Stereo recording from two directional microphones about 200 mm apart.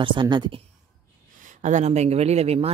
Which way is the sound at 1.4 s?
40° right (ahead or behind).